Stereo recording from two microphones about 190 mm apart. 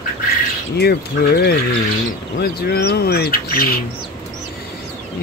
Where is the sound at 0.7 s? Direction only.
60° left (ahead or behind).